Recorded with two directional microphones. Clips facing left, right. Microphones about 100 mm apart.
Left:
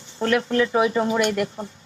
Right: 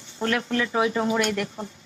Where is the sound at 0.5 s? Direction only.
5° left (ahead or behind).